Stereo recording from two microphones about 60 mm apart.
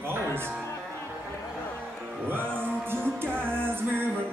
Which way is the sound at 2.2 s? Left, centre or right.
Right.